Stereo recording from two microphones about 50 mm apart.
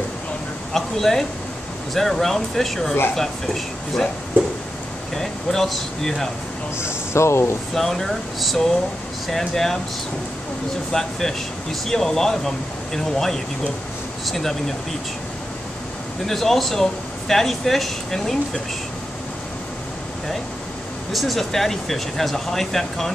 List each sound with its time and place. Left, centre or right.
0.7 s speech: centre
5.1 s speech: centre
7.2 s speech: left
7.7 s speech: centre
10.9 s speech: centre
16.3 s speech: centre
21.1 s speech: centre